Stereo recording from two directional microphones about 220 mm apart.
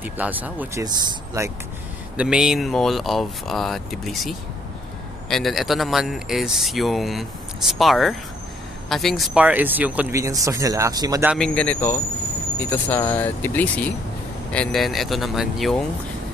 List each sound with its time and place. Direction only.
0.0 s speech: 10° right (ahead or behind)
0.8 s speech: 20° right (ahead or behind)
2.1 s a man's voice: 5° right (ahead or behind)
11.3 s a man's voice: 5° left (ahead or behind)